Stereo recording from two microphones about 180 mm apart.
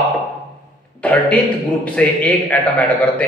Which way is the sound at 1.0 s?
5° left (ahead or behind).